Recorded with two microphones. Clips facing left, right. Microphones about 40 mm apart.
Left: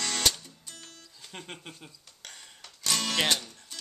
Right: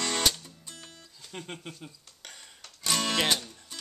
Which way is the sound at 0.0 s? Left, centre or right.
Centre.